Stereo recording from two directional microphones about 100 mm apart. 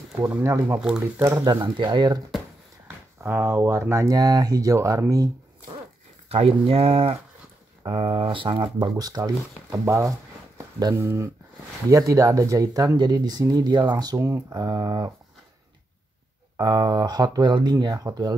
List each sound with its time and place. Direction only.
0.4 s speech: 25° right (ahead or behind)
0.7 s speech: 10° right (ahead or behind)
1.3 s speech: 45° right (ahead or behind)
3.2 s speech: 25° right (ahead or behind)
6.2 s speech: 80° right
7.8 s speech: 50° right (ahead or behind)
9.7 s speech: 30° right (ahead or behind)
14.5 s speech: 45° right (ahead or behind)
16.5 s speech: 45° right (ahead or behind)